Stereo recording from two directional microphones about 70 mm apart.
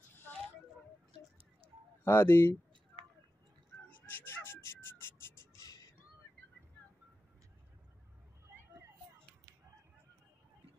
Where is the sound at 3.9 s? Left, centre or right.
Left.